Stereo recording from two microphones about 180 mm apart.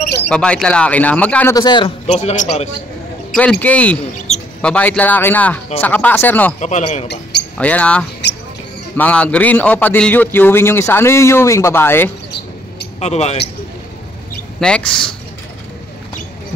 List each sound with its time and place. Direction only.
0.3 s speech: 5° left (ahead or behind)
1.5 s a man's voice: 25° left (ahead or behind)
2.0 s speech: 40° left (ahead or behind)
3.6 s speech: 5° left (ahead or behind)
6.6 s speech: 40° left (ahead or behind)
7.5 s speech: 5° left (ahead or behind)
8.2 s basketball bounce: 75° left (ahead or behind)
8.9 s speech: 5° left (ahead or behind)
13.0 s speech: 35° left (ahead or behind)
14.6 s speech: 5° left (ahead or behind)